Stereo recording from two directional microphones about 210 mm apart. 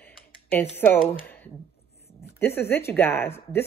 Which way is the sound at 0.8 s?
10° left (ahead or behind).